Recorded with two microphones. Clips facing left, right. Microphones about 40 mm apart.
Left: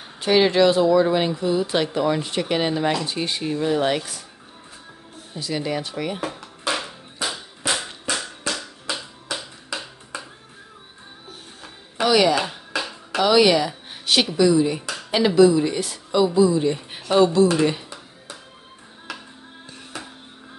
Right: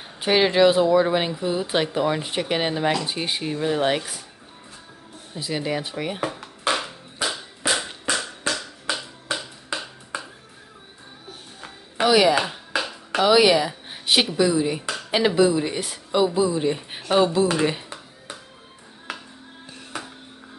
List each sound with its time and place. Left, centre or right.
0.2 s speech: centre
5.4 s speech: centre
6.7 s a sound: centre
11.6 s music: centre
14.3 s speech: centre
19.1 s music: right